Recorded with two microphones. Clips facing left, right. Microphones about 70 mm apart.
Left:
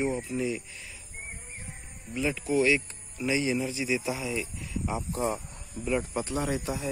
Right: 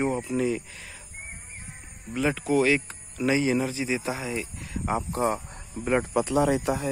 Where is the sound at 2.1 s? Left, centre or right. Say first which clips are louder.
Right 3 dB; right.